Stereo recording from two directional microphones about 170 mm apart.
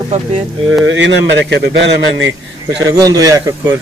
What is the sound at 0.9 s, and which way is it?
Speech, 85° right.